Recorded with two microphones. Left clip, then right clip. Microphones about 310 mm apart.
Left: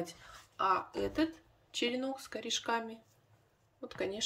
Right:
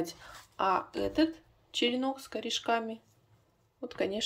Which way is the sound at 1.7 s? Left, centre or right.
Centre.